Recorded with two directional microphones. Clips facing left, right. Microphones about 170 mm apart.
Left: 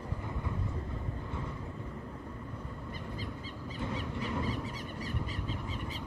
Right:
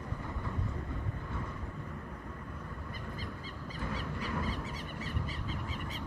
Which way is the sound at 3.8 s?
20° left (ahead or behind).